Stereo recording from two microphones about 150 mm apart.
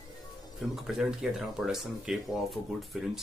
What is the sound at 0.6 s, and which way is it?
Speech, centre (ahead or behind).